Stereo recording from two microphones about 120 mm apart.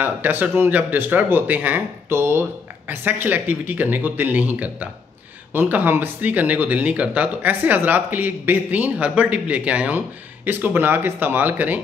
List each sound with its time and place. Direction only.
0.0 s speech: 15° right (ahead or behind)